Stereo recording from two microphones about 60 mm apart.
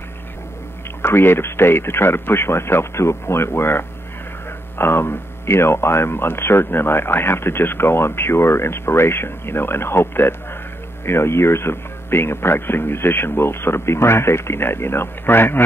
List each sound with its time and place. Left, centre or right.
1.0 s speech: left